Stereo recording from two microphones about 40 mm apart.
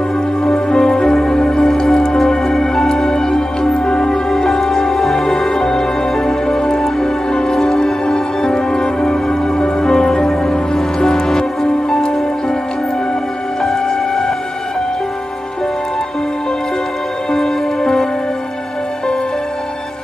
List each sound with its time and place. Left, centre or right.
0.4 s music: centre
13.6 s music: centre
17.3 s music: centre